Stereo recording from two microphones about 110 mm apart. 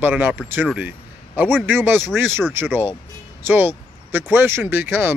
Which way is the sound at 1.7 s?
20° right (ahead or behind).